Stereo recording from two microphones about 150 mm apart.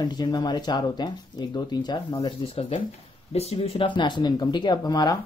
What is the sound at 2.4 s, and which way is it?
Speech, 40° left (ahead or behind).